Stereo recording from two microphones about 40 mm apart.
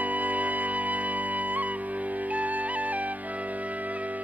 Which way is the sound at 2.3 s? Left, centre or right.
Right.